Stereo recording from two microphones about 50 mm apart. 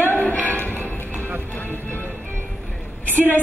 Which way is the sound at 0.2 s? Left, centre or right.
Left.